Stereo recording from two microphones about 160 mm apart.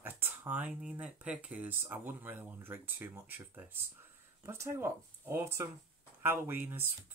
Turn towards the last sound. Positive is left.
turn(degrees=-15)  # may be behind; listen again after turning